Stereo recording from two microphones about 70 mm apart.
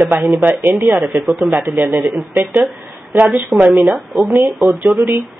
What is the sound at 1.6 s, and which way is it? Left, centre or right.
Speech, right.